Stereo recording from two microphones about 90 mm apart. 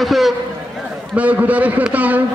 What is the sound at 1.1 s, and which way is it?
A man's voice, 15° right (ahead or behind).